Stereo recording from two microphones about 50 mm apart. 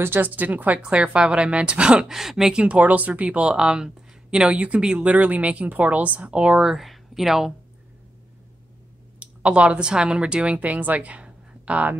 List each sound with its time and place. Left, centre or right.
0.0 s a woman's voice: right
0.3 s a woman's voice: right
0.8 s speech: right; by 2.5 s centre
2.5 s speech: right
6.6 s speech: centre
9.2 s a woman's voice: right